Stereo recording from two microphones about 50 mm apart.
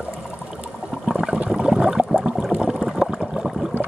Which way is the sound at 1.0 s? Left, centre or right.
Centre.